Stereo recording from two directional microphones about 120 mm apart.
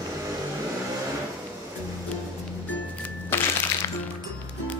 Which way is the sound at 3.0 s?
20° left (ahead or behind).